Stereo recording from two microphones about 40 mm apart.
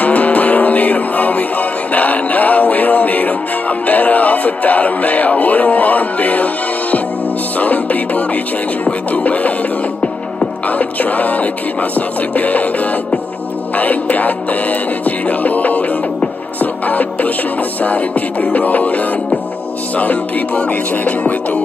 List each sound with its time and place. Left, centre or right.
0.0 s music: left
10.7 s music: left
13.7 s music: left